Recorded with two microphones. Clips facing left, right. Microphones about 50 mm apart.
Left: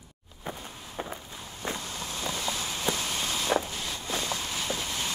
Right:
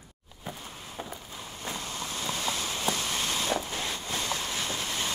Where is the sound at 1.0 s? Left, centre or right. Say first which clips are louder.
Left 4 dB; left.